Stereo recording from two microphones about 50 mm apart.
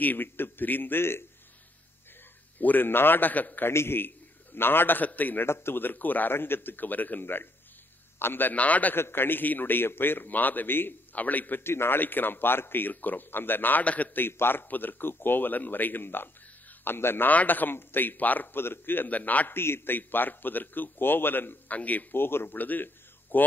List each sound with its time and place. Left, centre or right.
0.0 s a man's voice: left
2.6 s a man's voice: left
3.6 s a man's voice: left
5.5 s a man's voice: left
8.9 s a man's voice: left
11.6 s a man's voice: left
14.1 s a man's voice: left
17.3 s a man's voice: left
19.5 s a man's voice: left
21.7 s a man's voice: left
22.1 s a man's voice: left
22.6 s a man's voice: left